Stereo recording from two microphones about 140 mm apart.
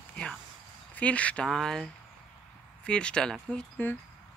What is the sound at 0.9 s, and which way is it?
Speech, 10° left (ahead or behind).